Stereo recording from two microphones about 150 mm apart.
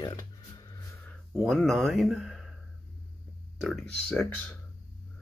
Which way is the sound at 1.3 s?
Centre (ahead or behind).